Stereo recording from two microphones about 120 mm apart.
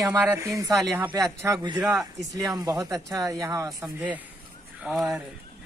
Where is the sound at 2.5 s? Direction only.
30° right (ahead or behind).